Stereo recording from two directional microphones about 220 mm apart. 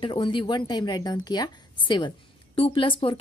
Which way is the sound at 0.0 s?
20° left (ahead or behind).